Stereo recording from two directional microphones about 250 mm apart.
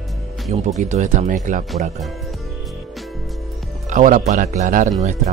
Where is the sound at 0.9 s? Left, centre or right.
Right.